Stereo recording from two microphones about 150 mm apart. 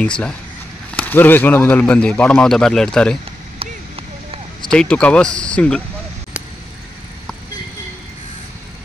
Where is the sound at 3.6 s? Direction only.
40° right (ahead or behind).